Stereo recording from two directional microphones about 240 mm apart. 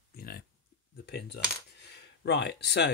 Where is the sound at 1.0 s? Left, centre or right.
Left.